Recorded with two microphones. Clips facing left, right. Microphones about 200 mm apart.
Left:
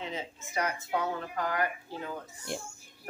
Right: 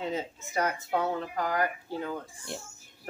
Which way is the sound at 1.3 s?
40° right (ahead or behind).